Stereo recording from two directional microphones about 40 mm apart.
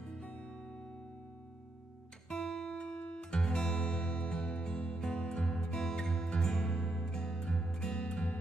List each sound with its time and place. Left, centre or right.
0.0 s music: left
2.2 s music: centre
5.0 s music: centre